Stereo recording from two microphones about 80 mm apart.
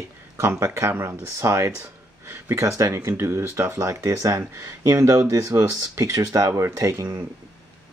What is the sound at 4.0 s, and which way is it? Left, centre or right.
Speech, right.